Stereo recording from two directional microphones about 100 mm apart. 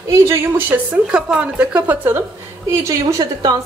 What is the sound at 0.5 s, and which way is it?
A woman's voice, 20° right (ahead or behind).